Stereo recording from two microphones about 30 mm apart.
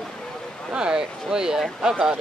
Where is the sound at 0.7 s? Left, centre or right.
Right.